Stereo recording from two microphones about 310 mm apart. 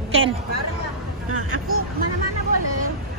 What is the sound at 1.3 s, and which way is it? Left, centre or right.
Speech, right.